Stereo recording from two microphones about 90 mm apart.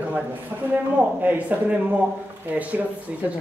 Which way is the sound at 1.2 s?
20° right (ahead or behind).